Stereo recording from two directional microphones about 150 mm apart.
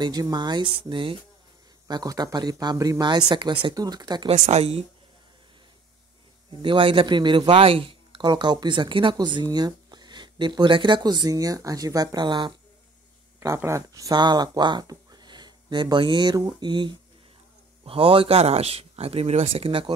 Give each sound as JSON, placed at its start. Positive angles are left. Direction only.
{"t": 0.0, "sound": "a man's voice", "side_deg": -25}
{"t": 4.3, "sound": "a woman's voice", "side_deg": -45}
{"t": 6.6, "sound": "a man's voice", "side_deg": -35}
{"t": 13.4, "sound": "a man's voice", "side_deg": -20}